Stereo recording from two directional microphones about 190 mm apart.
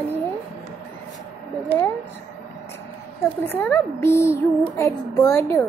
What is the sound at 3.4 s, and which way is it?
Speech, 10° left (ahead or behind).